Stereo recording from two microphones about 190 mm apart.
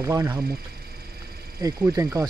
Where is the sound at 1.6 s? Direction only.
15° right (ahead or behind).